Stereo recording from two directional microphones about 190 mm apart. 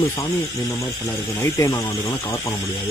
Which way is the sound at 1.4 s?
15° left (ahead or behind).